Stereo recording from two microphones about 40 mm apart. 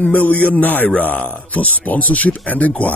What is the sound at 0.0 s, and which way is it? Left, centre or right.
Speech, left.